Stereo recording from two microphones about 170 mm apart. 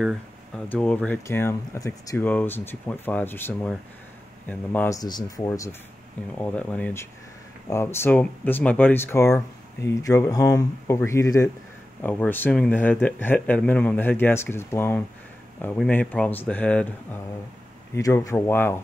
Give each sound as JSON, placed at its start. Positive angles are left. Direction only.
{"t": 0.7, "sound": "speech", "side_deg": 5}
{"t": 4.9, "sound": "speech", "side_deg": 20}
{"t": 6.3, "sound": "speech", "side_deg": 10}